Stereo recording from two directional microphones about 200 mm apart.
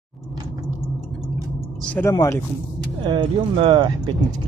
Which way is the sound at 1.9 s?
15° left (ahead or behind).